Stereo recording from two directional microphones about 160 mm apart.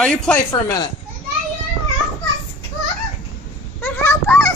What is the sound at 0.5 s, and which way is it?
Speech, 25° left (ahead or behind).